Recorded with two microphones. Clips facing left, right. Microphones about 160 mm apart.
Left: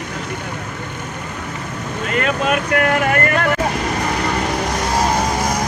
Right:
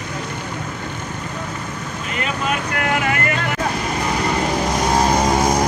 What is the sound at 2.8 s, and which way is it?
Vehicle, 55° left (ahead or behind).